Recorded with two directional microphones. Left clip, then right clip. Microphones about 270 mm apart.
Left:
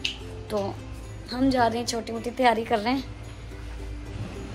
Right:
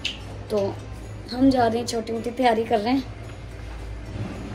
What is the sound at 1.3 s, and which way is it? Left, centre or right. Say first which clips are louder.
A woman's voice: right 3 dB; centre.